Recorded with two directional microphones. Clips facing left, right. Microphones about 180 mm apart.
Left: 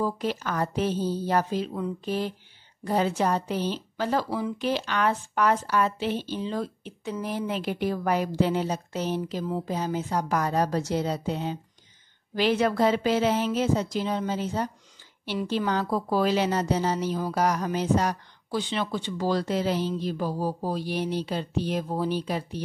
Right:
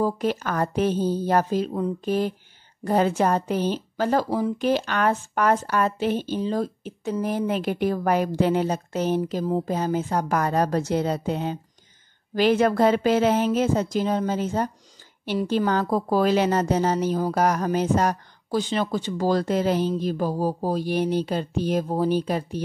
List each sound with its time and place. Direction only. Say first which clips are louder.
0.0 s a woman's voice: right 4 dB; 50° right (ahead or behind)